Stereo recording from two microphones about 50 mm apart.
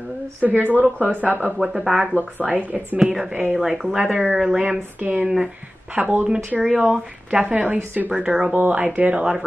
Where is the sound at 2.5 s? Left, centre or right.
Right.